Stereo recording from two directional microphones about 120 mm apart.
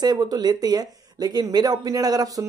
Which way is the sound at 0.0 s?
35° right (ahead or behind).